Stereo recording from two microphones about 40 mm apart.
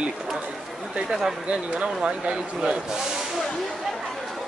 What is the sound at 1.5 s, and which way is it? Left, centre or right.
Speech, right.